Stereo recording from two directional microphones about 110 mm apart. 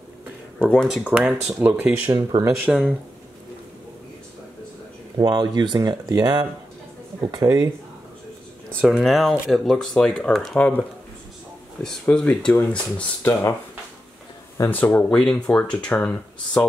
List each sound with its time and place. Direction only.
0.8 s speech: 10° right (ahead or behind)
2.1 s speech: 40° right (ahead or behind)
2.7 s speech: centre (ahead or behind)
5.1 s speech: 40° right (ahead or behind)
8.8 s speech: centre (ahead or behind)
11.8 s speech: 5° left (ahead or behind)
13.2 s speech: 25° left (ahead or behind)
14.7 s speech: 15° left (ahead or behind)